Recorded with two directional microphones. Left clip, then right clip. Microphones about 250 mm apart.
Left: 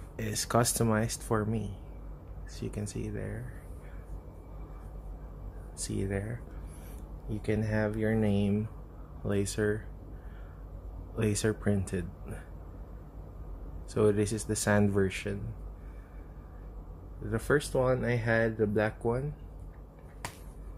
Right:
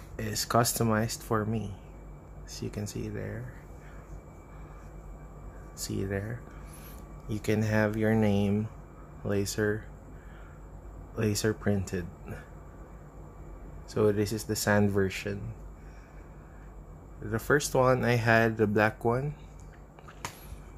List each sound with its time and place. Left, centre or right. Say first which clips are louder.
0.1 s speech: right 2 dB; centre
5.8 s speech: right 1 dB; centre
7.2 s speech: right 3 dB; centre
11.1 s speech: right 1 dB; centre
13.9 s speech: even; centre
17.3 s speech: right 2 dB; centre